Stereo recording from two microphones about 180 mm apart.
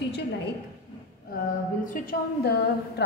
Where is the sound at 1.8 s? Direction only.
50° left (ahead or behind).